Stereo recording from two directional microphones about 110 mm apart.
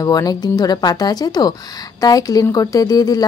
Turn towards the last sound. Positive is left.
turn(degrees=35)  # may be behind; listen again after turning